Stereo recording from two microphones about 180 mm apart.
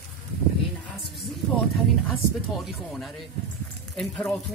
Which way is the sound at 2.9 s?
Centre (ahead or behind).